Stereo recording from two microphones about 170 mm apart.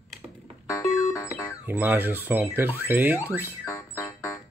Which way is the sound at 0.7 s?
20° left (ahead or behind).